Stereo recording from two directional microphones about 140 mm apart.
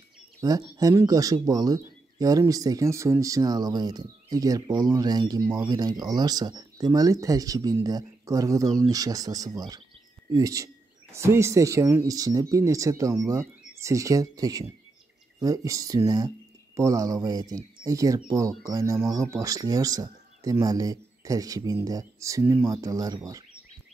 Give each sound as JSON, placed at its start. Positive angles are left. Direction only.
{"t": 0.4, "sound": "speech", "side_deg": -25}